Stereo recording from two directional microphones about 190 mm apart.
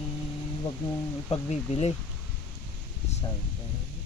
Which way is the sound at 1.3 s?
35° left (ahead or behind).